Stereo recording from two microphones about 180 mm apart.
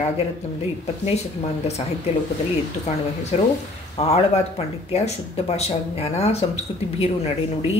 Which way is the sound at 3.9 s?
35° left (ahead or behind).